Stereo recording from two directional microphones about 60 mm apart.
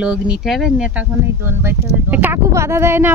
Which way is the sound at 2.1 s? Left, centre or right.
Right.